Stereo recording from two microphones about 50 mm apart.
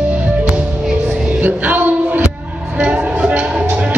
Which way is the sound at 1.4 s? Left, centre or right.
Right.